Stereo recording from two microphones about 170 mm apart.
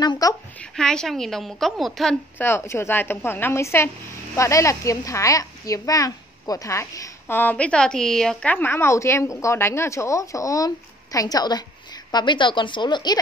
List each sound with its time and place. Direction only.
0.0 s a child's voice: 20° left (ahead or behind)
0.6 s a woman's voice: 5° left (ahead or behind)
2.4 s a woman's voice: 15° left (ahead or behind)